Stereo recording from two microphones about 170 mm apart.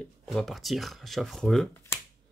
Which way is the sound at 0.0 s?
Centre (ahead or behind).